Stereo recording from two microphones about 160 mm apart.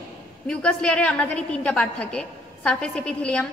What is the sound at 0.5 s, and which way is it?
A woman's voice, 5° left (ahead or behind).